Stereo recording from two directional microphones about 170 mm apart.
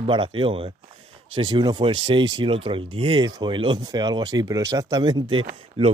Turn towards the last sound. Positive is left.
turn(degrees=-35)  # may be behind; listen again after turning